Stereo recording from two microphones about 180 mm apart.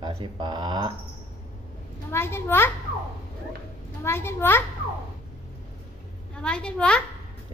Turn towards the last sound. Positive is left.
turn(degrees=5)  # may be behind; listen again after turning